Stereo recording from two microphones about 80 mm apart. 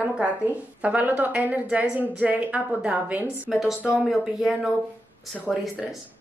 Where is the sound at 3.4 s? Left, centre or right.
Centre.